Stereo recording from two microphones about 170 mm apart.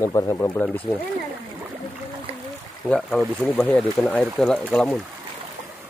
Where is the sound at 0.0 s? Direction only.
20° left (ahead or behind).